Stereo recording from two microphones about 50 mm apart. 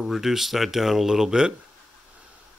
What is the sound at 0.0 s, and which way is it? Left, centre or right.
Speech, centre.